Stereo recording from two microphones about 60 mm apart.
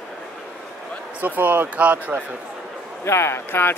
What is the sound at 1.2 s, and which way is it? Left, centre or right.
Speech, right.